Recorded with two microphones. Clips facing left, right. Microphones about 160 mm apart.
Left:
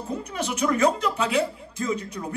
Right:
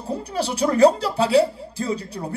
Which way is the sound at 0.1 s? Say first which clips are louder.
Right 5 dB; 35° right (ahead or behind).